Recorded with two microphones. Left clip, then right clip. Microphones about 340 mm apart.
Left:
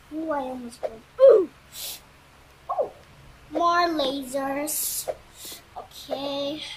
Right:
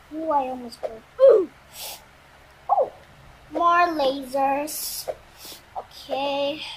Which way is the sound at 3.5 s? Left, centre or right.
Centre.